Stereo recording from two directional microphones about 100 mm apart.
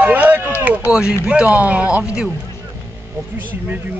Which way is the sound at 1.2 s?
10° right (ahead or behind).